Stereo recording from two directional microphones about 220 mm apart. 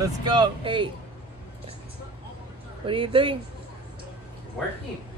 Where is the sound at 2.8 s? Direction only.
25° right (ahead or behind).